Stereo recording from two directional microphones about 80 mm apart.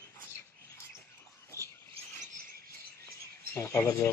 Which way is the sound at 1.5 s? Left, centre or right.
Right.